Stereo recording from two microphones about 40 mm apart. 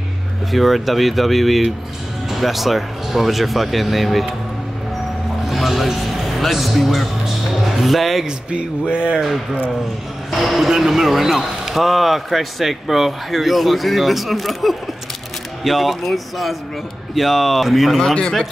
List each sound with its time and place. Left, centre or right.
0.5 s speech: centre
5.5 s music: centre
8.3 s speech: right
9.2 s speech: centre